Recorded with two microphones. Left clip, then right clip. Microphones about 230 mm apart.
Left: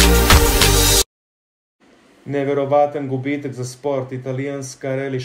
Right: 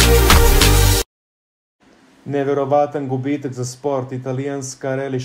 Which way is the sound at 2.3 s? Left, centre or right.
Centre.